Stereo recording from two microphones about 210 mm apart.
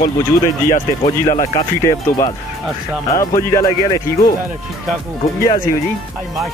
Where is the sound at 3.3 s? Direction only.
15° left (ahead or behind).